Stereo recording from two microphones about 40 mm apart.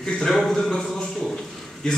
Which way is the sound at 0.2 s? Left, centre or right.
Centre.